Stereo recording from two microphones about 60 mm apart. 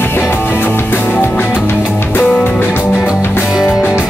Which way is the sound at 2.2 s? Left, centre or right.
Centre.